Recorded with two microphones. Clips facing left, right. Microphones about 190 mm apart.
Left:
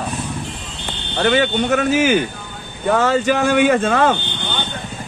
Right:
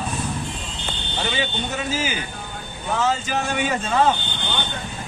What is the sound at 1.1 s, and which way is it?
Speech, 60° left (ahead or behind).